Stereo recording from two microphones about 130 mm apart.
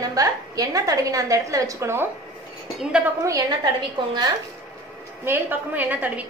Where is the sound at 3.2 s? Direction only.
25° right (ahead or behind).